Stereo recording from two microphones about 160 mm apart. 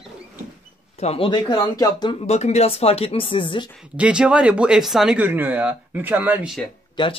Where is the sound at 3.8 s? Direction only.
5° right (ahead or behind).